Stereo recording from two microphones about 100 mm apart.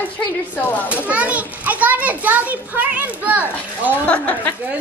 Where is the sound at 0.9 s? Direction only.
15° right (ahead or behind).